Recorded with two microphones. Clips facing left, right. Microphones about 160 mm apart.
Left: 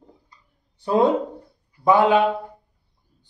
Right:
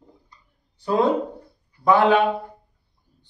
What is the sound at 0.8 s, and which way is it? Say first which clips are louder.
Speech: left 2 dB; 20° left (ahead or behind).